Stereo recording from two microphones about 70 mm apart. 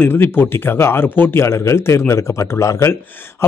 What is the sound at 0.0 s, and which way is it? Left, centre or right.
Speech, left.